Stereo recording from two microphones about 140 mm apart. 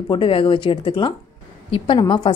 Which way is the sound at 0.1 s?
40° left (ahead or behind).